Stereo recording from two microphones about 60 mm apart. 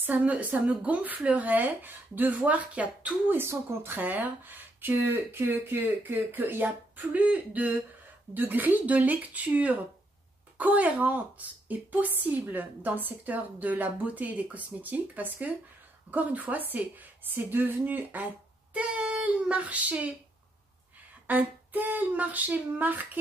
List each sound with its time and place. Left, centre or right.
0.0 s a woman's voice: right
3.3 s a woman's voice: right
21.3 s a woman's voice: right